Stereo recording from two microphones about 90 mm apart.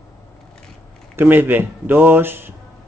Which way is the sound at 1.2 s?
20° right (ahead or behind).